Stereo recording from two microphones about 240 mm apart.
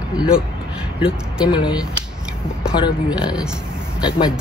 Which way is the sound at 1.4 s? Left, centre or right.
Centre.